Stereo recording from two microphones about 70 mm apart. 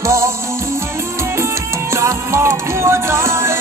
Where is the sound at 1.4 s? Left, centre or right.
Right.